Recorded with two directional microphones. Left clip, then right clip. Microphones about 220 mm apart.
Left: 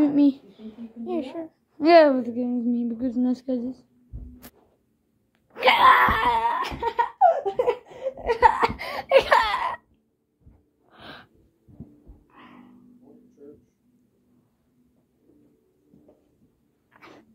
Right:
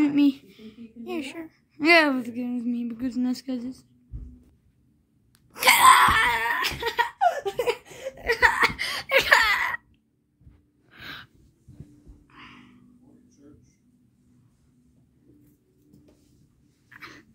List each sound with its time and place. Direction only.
0.0 s a woman's voice: 30° right (ahead or behind)
5.5 s wail: 35° right (ahead or behind)
6.1 s laughter: 10° right (ahead or behind)
8.2 s a sound: 10° right (ahead or behind)
10.9 s gasp: 10° right (ahead or behind)
12.4 s music: 20° right (ahead or behind)
17.0 s a sound: 15° right (ahead or behind)